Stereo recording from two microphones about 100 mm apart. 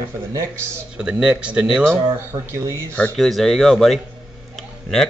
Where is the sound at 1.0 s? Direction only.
10° right (ahead or behind).